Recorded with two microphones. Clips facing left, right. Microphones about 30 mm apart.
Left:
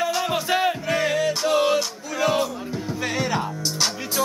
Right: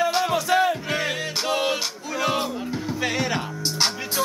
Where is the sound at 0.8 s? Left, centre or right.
Centre.